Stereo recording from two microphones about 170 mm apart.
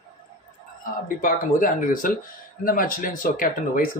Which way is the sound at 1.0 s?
55° left (ahead or behind).